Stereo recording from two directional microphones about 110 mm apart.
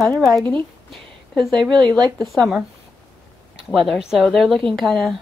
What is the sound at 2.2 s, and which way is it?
Speech, centre (ahead or behind).